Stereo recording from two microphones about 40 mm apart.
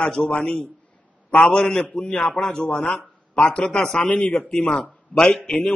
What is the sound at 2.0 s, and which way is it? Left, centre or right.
A man's voice, left.